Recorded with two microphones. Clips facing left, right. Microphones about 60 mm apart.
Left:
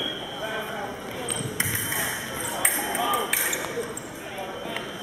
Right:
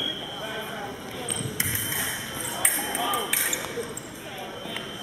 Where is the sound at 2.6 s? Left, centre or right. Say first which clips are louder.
Left 2 dB; centre.